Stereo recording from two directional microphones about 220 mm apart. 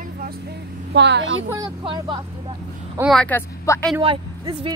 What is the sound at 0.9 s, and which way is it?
Speech, 50° right (ahead or behind).